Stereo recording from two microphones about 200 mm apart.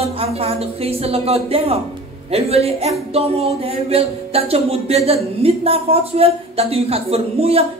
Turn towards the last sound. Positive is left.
turn(degrees=-30)  # may be behind; listen again after turning